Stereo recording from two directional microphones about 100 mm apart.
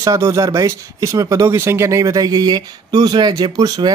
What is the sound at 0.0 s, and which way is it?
Speech, 35° right (ahead or behind).